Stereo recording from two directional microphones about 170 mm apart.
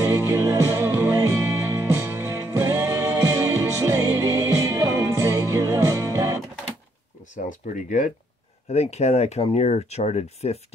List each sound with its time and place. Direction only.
0.0 s music: 15° right (ahead or behind)
7.4 s speech: 50° left (ahead or behind)